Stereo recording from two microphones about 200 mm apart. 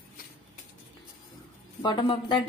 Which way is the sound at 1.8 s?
25° left (ahead or behind).